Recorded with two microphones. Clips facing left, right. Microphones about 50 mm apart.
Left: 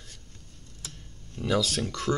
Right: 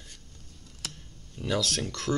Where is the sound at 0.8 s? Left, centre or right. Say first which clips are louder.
Right 4 dB; right.